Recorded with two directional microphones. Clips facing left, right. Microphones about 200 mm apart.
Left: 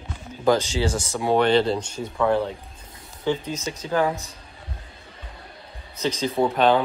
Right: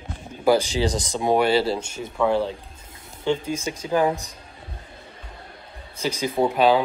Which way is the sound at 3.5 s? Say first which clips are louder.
Right 1 dB; 10° right (ahead or behind).